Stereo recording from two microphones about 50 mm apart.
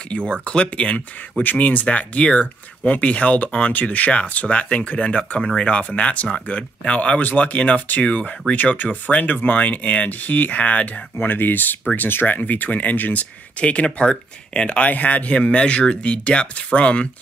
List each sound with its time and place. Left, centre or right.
0.3 s speech: left
11.1 s speech: left
11.8 s speech: left
12.1 s speech: left; by 14.9 s centre
14.9 s speech: left